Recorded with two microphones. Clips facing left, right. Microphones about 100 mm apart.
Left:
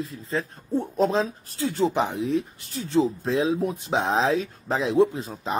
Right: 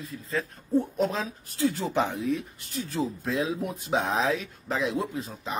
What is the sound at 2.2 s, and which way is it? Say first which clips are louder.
Speech: left 4 dB; 30° left (ahead or behind).